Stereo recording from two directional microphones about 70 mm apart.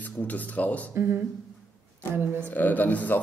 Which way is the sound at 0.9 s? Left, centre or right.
Right.